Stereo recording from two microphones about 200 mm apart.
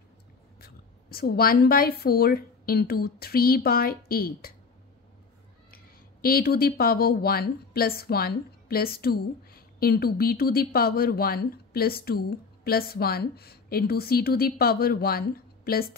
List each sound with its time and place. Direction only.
0.6 s a woman's voice: 50° left (ahead or behind)
6.2 s a woman's voice: 50° left (ahead or behind)